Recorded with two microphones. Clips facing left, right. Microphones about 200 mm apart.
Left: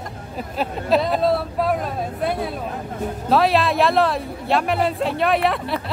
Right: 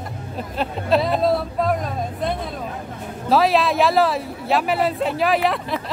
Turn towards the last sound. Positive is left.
turn(degrees=0)  # may be behind; listen again after turning